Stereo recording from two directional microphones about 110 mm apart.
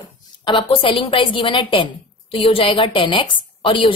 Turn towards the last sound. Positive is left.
turn(degrees=50)  # may be behind; listen again after turning